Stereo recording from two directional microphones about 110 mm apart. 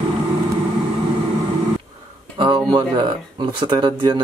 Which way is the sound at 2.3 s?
40° right (ahead or behind).